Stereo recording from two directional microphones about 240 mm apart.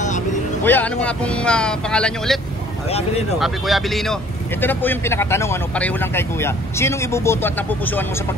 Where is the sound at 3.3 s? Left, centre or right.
Centre.